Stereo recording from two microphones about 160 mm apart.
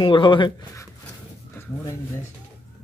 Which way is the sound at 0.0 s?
30° left (ahead or behind).